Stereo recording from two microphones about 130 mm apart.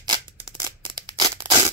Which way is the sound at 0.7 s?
35° right (ahead or behind).